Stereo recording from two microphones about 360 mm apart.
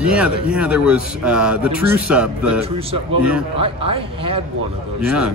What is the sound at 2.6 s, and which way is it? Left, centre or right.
A man's voice, centre.